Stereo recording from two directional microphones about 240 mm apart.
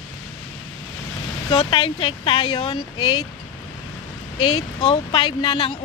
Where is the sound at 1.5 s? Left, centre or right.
Left.